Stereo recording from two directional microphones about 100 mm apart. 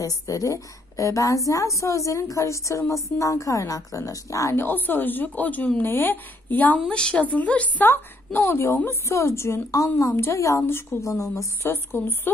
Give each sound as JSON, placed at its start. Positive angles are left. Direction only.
{"t": 0.0, "sound": "a woman's voice", "side_deg": 35}